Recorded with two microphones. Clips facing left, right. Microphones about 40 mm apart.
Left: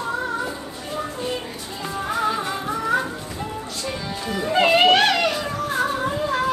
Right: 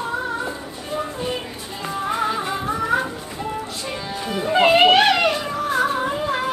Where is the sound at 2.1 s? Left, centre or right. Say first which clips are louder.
Even; centre.